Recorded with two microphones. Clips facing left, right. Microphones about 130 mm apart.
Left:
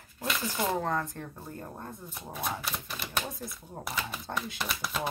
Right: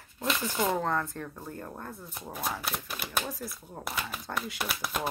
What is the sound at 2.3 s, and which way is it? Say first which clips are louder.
Typewriter: right 1 dB; centre (ahead or behind).